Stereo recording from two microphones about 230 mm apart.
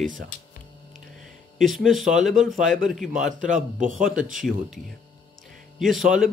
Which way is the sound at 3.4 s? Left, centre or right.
Right.